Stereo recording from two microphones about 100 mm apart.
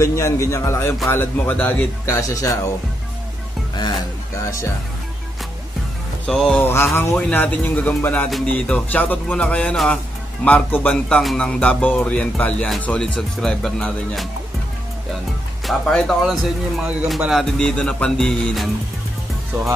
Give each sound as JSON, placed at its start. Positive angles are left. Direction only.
{"t": 0.0, "sound": "a man's voice", "side_deg": 30}
{"t": 2.0, "sound": "speech", "side_deg": 30}
{"t": 6.2, "sound": "speech", "side_deg": 5}
{"t": 6.6, "sound": "a man's voice", "side_deg": 25}
{"t": 7.2, "sound": "speech", "side_deg": 15}
{"t": 15.6, "sound": "speech", "side_deg": 0}
{"t": 17.6, "sound": "speech", "side_deg": 10}